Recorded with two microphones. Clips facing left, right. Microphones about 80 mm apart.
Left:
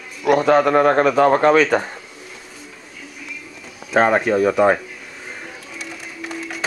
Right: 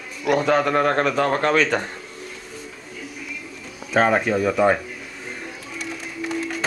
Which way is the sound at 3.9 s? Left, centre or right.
Centre.